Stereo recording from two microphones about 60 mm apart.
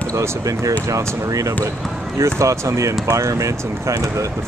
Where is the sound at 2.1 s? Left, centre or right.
Right.